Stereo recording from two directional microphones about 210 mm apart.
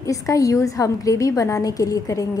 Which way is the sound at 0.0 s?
15° left (ahead or behind).